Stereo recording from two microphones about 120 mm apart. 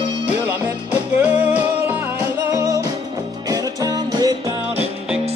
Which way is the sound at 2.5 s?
25° right (ahead or behind).